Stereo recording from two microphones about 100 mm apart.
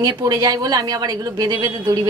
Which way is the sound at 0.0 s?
40° right (ahead or behind).